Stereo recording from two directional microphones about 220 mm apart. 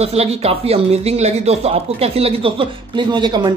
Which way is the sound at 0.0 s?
25° right (ahead or behind).